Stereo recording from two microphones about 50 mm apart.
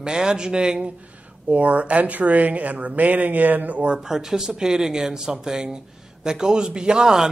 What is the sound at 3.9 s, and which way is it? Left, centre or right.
A man's voice, centre.